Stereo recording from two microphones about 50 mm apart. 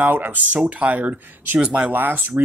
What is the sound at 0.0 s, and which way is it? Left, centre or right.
Speech, right.